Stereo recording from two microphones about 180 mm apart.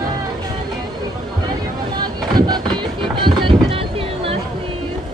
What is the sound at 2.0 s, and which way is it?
Boat, 25° right (ahead or behind).